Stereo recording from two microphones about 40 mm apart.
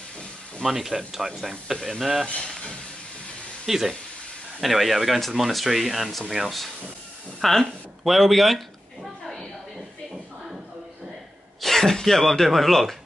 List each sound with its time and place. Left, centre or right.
0.6 s speech: centre
2.4 s speech: centre
3.6 s speech: centre
8.0 s a sound: centre
11.6 s speech: centre